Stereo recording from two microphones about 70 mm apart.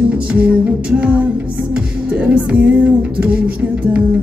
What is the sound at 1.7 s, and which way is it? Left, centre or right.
Music, centre.